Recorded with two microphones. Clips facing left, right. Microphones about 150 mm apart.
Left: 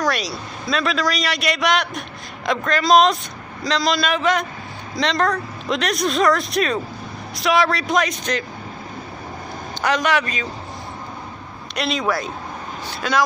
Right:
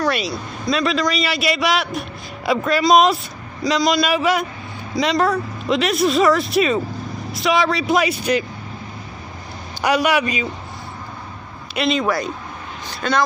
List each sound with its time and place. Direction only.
0.0 s a sound: 5° right (ahead or behind)
0.3 s a man's voice: centre (ahead or behind)
9.8 s a man's voice: 10° right (ahead or behind)
11.7 s a man's voice: centre (ahead or behind)